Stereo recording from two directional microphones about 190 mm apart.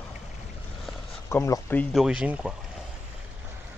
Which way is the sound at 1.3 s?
15° left (ahead or behind).